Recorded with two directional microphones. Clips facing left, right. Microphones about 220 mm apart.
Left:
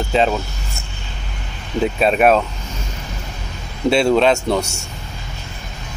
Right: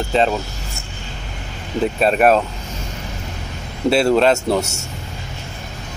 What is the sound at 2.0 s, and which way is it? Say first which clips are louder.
Speech: even; centre (ahead or behind).